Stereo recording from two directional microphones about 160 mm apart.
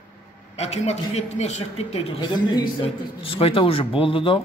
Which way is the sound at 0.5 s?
40° left (ahead or behind).